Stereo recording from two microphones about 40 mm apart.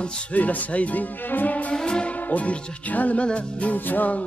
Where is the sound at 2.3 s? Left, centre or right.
Left.